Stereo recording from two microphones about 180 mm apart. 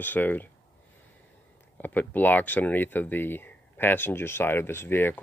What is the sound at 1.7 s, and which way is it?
Speech, 10° left (ahead or behind).